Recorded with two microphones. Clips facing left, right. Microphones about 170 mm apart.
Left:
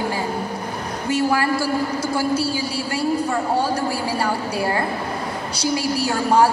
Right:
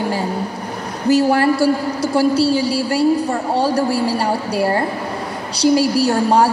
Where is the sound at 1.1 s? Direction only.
30° right (ahead or behind).